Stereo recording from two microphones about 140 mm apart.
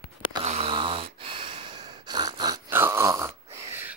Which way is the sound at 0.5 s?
40° right (ahead or behind).